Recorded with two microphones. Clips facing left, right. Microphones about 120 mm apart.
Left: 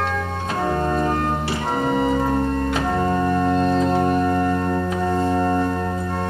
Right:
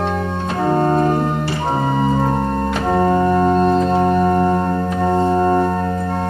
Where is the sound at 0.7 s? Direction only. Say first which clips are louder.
Right 7 dB; 35° right (ahead or behind).